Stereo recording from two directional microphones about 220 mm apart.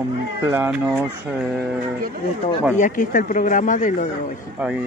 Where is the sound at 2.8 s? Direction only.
35° left (ahead or behind).